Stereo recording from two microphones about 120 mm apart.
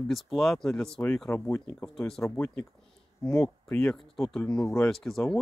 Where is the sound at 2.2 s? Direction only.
15° left (ahead or behind).